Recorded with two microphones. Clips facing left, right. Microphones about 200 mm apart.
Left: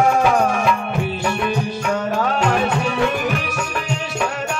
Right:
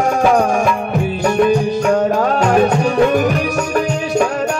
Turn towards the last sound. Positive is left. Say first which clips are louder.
# right 7 dB
turn(degrees=-45)  # may be behind; listen again after turning